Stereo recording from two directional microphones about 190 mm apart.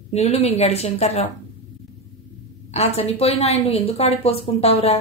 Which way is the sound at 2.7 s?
35° left (ahead or behind).